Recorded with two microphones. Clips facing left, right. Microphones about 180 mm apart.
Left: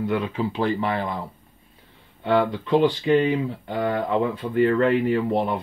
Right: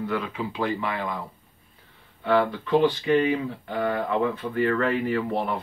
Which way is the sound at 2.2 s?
20° left (ahead or behind).